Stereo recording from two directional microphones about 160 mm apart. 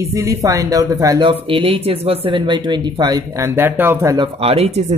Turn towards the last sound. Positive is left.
turn(degrees=-45)  # may be behind; listen again after turning